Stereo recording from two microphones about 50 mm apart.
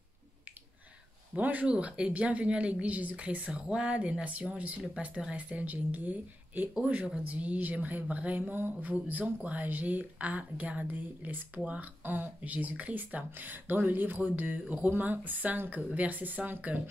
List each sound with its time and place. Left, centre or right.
1.3 s speech: right
1.7 s a woman's voice: right
8.5 s a sound: right
9.2 s speech: right